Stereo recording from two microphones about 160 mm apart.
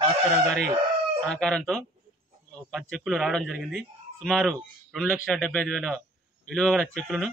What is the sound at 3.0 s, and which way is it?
A man's voice, centre (ahead or behind).